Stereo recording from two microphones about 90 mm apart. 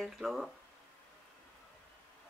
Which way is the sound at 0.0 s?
5° right (ahead or behind).